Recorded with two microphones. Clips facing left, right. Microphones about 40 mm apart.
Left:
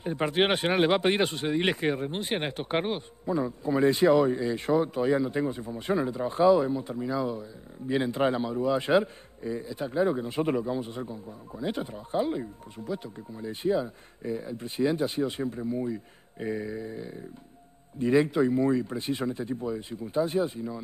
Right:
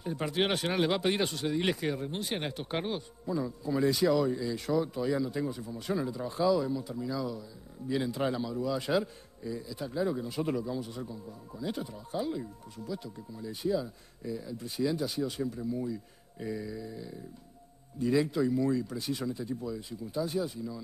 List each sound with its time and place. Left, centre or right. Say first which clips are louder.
0.0 s a man's voice: left 5 dB; left